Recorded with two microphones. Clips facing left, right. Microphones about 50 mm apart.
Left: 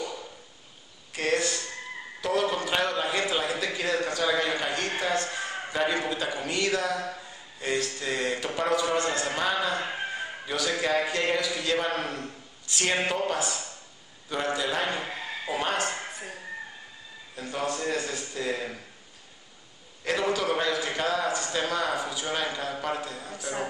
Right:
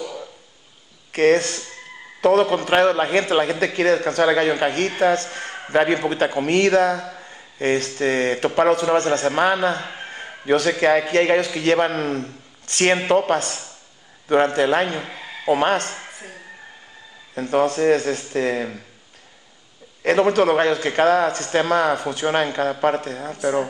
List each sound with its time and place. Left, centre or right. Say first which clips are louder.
1.1 s a man's voice: right 10 dB; right
5.3 s a sound: right 2 dB; right
5.7 s a man's voice: right 10 dB; right
9.8 s speech: even; centre
10.1 s a sound: right 11 dB; right
10.7 s a man's voice: right 6 dB; right
15.0 s speech: right 3 dB; centre
15.4 s a man's voice: right 10 dB; right
16.0 s a sound: even; centre
17.4 s a man's voice: right 12 dB; right
20.0 s a man's voice: right 10 dB; right